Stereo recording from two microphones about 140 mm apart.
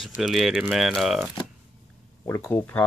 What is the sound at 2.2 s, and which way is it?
Speech, 15° left (ahead or behind).